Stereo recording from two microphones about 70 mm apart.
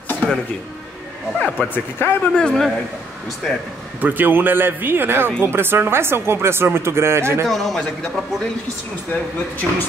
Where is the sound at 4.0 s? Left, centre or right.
Right.